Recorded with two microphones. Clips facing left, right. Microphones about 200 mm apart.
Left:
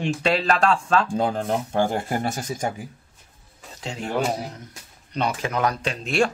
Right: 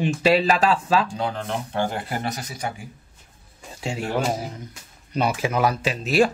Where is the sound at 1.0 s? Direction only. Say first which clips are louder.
Left 4 dB; 45° left (ahead or behind).